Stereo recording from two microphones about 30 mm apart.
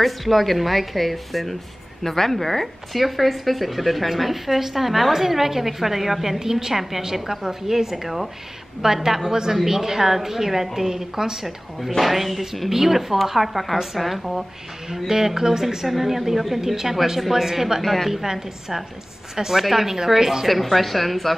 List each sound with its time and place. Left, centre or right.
0.0 s a woman's voice: centre
12.0 s a woman's voice: centre
15.0 s a woman's voice: centre
17.8 s speech: centre
18.1 s a woman's voice: centre
20.4 s speech: centre